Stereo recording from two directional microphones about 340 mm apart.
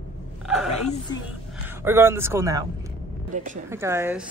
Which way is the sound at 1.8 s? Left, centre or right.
Centre.